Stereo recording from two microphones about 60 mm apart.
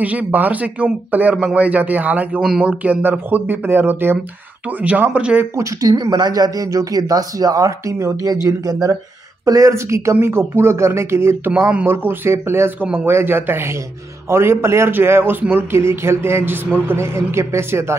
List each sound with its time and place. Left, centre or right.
0.0 s speech: right
3.0 s speech: right
4.8 s speech: right
5.6 s speech: right
9.5 s speech: right
10.2 s a man's voice: right